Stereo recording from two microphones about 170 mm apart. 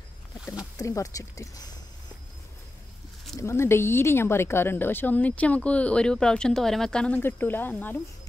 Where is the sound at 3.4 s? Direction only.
15° left (ahead or behind).